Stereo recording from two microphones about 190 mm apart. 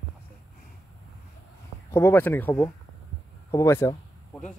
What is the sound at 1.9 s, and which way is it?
Speech, 15° left (ahead or behind).